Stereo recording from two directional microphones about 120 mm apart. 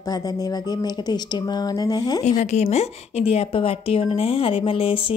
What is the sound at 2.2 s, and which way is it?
A woman's voice, 75° left (ahead or behind).